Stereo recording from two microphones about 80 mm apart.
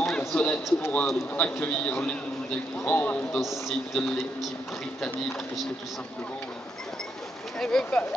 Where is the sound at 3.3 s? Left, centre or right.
Centre.